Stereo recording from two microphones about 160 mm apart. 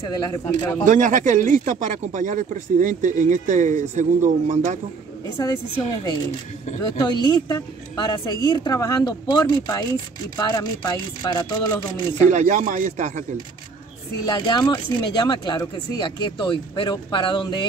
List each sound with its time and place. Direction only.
0.3 s speech: 25° left (ahead or behind)
0.8 s speech: 55° right (ahead or behind)
5.4 s speech: 25° left (ahead or behind)
12.3 s speech: 50° right (ahead or behind)
14.2 s speech: 25° left (ahead or behind)